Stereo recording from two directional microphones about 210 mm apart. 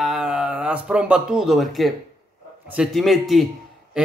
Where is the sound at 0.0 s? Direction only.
Centre (ahead or behind).